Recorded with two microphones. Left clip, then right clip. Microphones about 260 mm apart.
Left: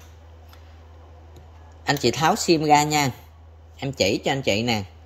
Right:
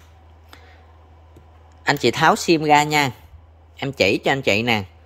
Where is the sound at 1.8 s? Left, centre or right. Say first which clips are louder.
Right 4 dB; centre.